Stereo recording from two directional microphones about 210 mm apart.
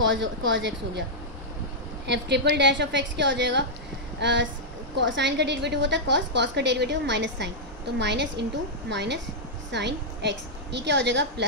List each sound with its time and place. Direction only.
0.0 s a woman's voice: 60° right (ahead or behind)
2.0 s a woman's voice: 55° right (ahead or behind)